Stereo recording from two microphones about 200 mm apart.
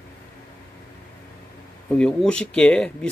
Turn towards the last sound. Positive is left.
turn(degrees=5)  # may be behind; listen again after turning